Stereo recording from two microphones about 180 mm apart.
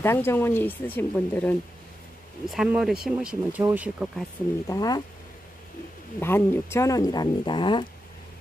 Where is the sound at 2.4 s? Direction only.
Centre (ahead or behind).